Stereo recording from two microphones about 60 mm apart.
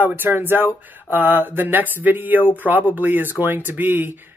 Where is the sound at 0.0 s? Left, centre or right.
Right.